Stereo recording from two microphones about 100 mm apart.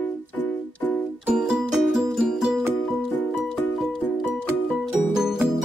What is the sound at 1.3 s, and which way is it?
Music, 5° right (ahead or behind).